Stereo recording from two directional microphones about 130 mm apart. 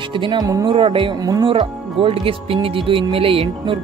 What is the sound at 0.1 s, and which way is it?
Speech, 40° right (ahead or behind).